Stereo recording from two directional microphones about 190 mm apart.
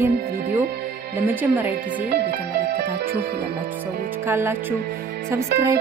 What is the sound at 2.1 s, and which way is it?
Music, 60° right (ahead or behind).